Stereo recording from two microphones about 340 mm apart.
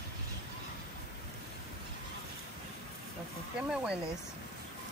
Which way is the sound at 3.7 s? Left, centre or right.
Centre.